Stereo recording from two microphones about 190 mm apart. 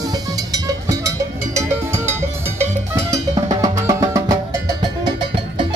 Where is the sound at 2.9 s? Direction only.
20° right (ahead or behind).